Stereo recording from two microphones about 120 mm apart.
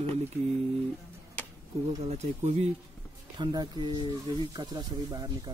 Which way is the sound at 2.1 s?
65° right (ahead or behind).